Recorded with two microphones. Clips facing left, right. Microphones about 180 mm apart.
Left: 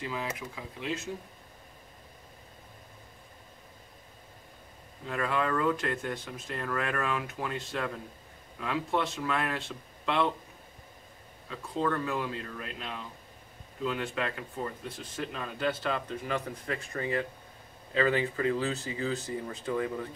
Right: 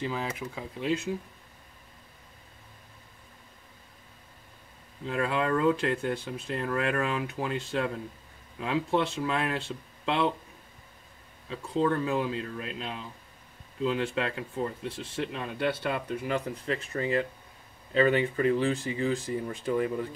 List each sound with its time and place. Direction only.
0.6 s speech: 30° right (ahead or behind)
5.0 s speech: 30° right (ahead or behind)
11.4 s speech: 30° right (ahead or behind)